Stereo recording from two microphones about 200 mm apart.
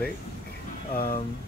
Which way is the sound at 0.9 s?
45° left (ahead or behind).